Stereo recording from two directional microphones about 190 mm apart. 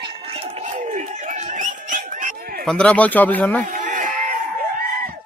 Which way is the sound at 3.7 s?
45° right (ahead or behind).